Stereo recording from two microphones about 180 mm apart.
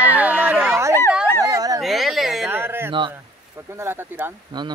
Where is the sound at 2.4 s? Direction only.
10° right (ahead or behind).